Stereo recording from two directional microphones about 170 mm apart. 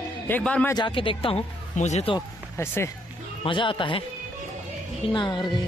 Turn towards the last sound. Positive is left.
turn(degrees=25)  # may be behind; listen again after turning